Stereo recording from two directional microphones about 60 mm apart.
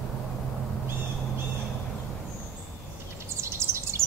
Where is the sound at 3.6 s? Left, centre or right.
Right.